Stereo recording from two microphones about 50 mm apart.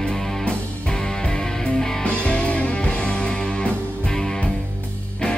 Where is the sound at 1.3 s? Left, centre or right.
Centre.